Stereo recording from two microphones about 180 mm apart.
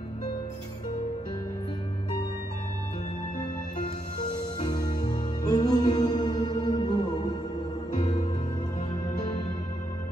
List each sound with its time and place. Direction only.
4.8 s music: 25° left (ahead or behind)
8.0 s music: 40° left (ahead or behind)